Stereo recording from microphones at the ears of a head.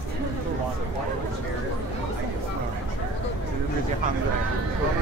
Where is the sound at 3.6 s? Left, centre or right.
Right.